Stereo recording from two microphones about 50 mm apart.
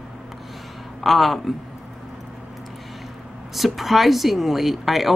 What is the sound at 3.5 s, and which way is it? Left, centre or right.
Speech, centre.